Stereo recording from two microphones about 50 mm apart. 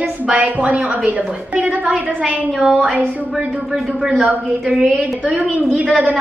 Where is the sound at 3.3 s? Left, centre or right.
Centre.